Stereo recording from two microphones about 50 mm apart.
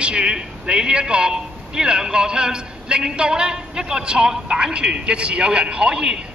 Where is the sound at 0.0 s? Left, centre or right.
Right.